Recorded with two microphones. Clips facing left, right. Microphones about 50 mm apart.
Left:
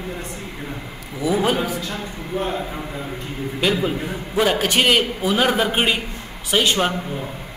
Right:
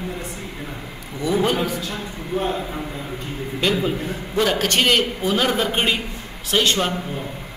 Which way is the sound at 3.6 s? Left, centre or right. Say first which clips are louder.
Even; centre.